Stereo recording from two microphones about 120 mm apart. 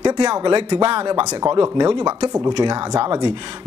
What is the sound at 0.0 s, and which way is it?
Speech, 35° right (ahead or behind).